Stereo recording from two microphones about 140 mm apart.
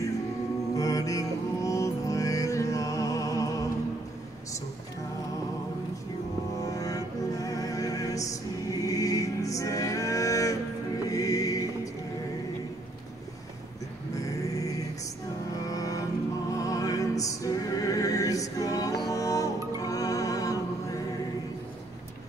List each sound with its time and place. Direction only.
0.7 s music: 25° left (ahead or behind)
6.6 s music: 25° left (ahead or behind)
15.6 s music: 25° left (ahead or behind)